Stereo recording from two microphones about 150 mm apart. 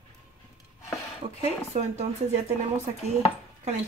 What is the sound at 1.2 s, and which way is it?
Speech, 45° right (ahead or behind).